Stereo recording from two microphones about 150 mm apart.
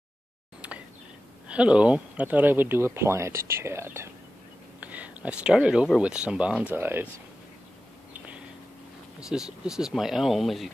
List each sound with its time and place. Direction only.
0.6 s a sound: 10° right (ahead or behind)
1.5 s speech: 10° right (ahead or behind)
9.3 s speech: 5° right (ahead or behind)